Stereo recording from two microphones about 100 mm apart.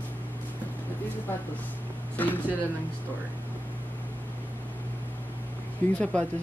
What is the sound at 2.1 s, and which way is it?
Speech, 20° left (ahead or behind).